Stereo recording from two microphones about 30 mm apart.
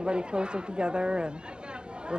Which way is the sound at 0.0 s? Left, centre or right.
Right.